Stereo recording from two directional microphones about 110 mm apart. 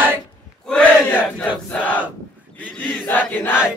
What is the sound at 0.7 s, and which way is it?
Crowd, 10° left (ahead or behind).